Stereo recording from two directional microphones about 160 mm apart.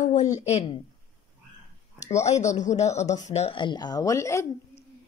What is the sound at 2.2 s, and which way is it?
A woman's voice, 45° left (ahead or behind).